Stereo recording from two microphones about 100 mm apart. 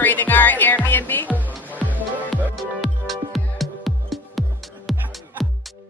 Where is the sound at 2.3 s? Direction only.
Centre (ahead or behind).